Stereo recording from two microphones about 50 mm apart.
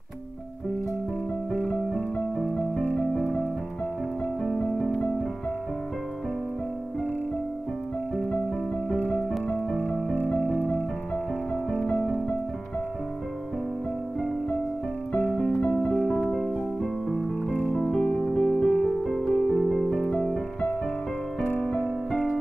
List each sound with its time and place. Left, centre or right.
1.7 s music: left
15.6 s music: centre
16.4 s keyboard: centre
17.6 s music: centre
20.1 s music: left